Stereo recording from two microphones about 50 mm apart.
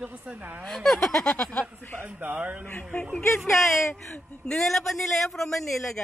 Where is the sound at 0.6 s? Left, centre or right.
Centre.